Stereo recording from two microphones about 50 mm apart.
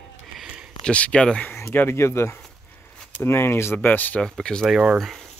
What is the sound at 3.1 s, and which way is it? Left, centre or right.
Speech, left.